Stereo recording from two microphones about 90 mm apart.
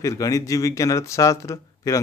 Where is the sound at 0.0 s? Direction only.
40° left (ahead or behind).